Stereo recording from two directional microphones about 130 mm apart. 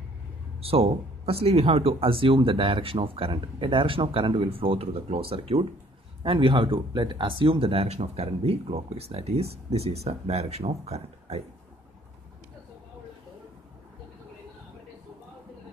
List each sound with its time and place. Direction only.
0.6 s speech: 50° right (ahead or behind)